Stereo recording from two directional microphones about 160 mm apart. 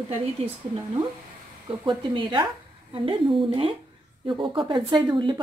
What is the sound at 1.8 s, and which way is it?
A woman's voice, 30° right (ahead or behind).